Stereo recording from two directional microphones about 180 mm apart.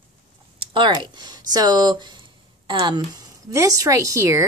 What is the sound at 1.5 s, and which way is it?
Speech, 20° right (ahead or behind).